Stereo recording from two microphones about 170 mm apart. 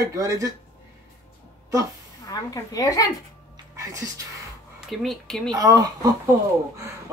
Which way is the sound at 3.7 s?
20° right (ahead or behind).